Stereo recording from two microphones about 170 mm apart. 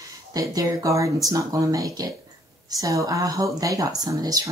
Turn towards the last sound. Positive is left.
turn(degrees=-20)  # may be behind; listen again after turning